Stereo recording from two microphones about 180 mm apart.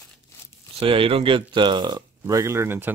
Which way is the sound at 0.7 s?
30° right (ahead or behind).